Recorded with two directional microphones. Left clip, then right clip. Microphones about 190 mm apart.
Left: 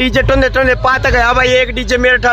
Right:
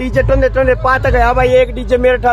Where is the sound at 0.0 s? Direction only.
10° left (ahead or behind).